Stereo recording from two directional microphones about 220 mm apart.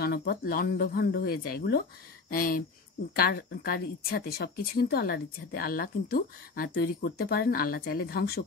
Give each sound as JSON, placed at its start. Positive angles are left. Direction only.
{"t": 0.0, "sound": "speech", "side_deg": 45}